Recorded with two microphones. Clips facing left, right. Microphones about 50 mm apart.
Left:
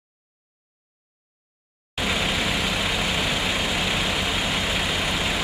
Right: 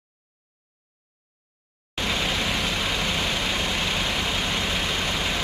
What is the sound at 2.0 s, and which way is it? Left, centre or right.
Vehicle, centre.